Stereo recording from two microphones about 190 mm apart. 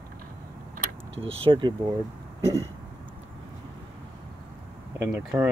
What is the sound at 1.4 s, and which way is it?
Speech, 25° right (ahead or behind).